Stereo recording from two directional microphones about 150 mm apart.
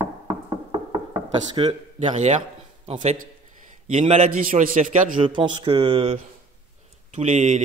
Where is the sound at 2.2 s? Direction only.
50° right (ahead or behind).